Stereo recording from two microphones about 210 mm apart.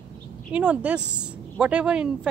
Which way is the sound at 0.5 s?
5° right (ahead or behind).